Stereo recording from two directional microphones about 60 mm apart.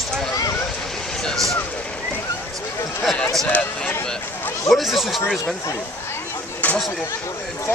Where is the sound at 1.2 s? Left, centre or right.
Centre.